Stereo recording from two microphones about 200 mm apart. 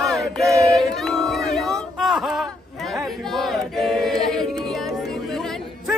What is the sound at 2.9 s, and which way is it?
Choir, centre (ahead or behind).